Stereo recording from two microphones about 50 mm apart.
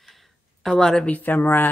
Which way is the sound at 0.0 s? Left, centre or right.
Centre.